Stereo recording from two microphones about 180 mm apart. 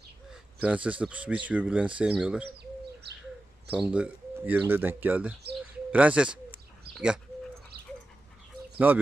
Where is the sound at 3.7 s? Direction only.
5° right (ahead or behind).